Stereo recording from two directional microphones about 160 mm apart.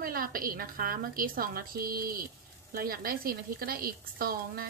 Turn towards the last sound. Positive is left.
turn(degrees=-65)  # may be behind; listen again after turning